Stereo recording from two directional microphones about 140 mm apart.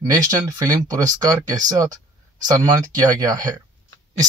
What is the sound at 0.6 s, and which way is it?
Speech, 25° right (ahead or behind).